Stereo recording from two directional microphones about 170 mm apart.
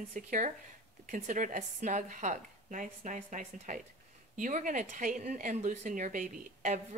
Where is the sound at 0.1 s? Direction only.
45° right (ahead or behind).